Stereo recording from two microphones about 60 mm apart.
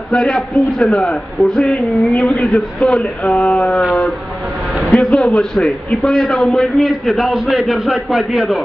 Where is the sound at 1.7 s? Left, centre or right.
Left.